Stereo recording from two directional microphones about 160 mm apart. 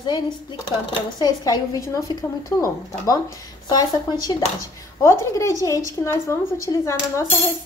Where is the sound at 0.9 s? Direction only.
25° left (ahead or behind).